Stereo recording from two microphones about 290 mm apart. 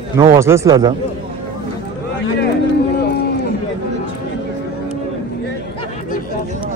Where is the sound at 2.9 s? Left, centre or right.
Left.